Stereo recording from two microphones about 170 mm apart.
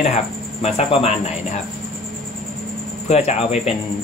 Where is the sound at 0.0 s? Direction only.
40° left (ahead or behind).